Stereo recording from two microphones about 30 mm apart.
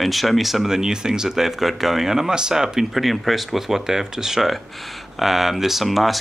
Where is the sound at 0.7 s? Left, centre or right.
Right.